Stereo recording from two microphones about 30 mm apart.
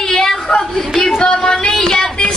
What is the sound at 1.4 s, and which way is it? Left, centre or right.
Child singing, left.